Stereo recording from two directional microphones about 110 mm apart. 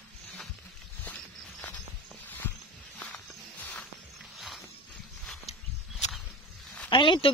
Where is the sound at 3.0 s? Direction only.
15° left (ahead or behind).